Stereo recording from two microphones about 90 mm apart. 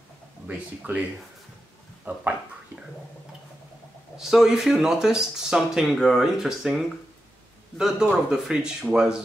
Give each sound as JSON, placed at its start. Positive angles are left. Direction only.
{"t": 0.5, "sound": "speech", "side_deg": -20}
{"t": 2.1, "sound": "speech", "side_deg": -15}
{"t": 4.2, "sound": "speech", "side_deg": -5}